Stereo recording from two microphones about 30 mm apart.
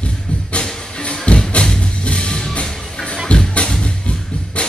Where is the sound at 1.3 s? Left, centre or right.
Left.